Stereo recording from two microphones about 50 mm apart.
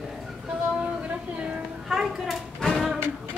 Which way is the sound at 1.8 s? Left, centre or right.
Centre.